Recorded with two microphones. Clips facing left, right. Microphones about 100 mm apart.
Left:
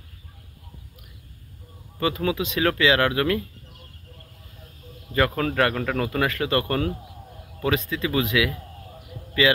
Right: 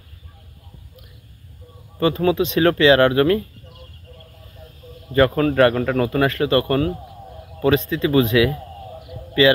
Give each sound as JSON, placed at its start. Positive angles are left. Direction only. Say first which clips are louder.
{"t": 2.0, "sound": "speech", "louder": "right 7 dB", "side_deg": -35}
{"t": 5.1, "sound": "a man's voice", "louder": "right 6 dB", "side_deg": -25}
{"t": 9.0, "sound": "a sound", "louder": "right 6 dB", "side_deg": -25}